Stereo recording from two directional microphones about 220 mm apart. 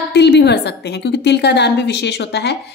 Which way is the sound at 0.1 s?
50° left (ahead or behind).